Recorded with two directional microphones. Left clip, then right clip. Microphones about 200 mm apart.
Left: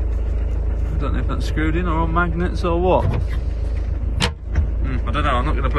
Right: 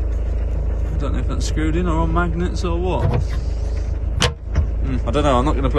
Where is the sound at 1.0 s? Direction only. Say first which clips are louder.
Left 1 dB; 10° right (ahead or behind).